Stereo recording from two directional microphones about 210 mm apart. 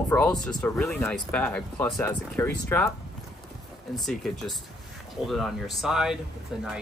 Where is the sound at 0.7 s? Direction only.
Centre (ahead or behind).